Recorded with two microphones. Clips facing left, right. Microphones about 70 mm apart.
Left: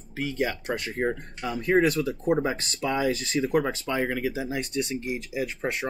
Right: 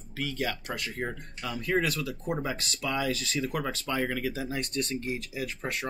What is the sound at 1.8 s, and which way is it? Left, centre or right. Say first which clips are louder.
Speech: left 7 dB; left.